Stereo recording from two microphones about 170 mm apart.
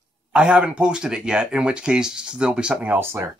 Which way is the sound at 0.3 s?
5° right (ahead or behind).